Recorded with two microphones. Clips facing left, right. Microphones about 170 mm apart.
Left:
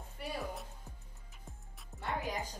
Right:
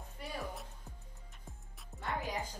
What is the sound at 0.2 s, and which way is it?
Music, 15° left (ahead or behind).